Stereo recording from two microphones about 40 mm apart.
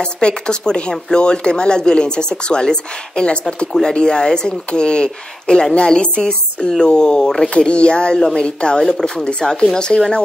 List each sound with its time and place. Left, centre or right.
0.0 s speech: centre